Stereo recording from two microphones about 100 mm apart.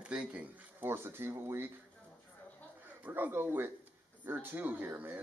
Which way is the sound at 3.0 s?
20° right (ahead or behind).